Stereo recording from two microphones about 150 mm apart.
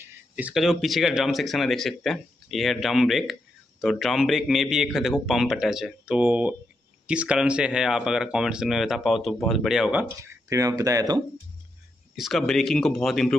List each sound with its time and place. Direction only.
0.0 s speech: 10° right (ahead or behind)
10.2 s speech: 20° right (ahead or behind)
12.2 s speech: centre (ahead or behind)